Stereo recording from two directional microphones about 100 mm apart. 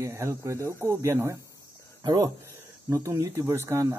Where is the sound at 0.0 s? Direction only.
30° right (ahead or behind).